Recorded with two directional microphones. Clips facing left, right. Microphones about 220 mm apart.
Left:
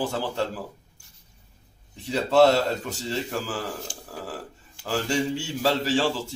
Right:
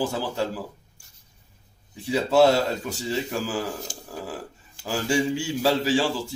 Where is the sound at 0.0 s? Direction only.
10° right (ahead or behind).